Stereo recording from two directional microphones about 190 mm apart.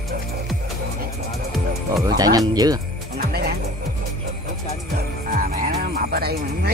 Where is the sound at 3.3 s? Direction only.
55° right (ahead or behind).